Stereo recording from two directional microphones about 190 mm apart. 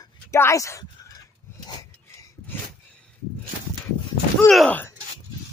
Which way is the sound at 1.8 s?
15° left (ahead or behind).